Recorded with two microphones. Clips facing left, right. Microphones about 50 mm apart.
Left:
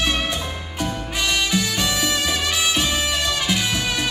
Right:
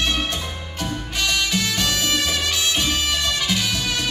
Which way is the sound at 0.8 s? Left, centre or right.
Centre.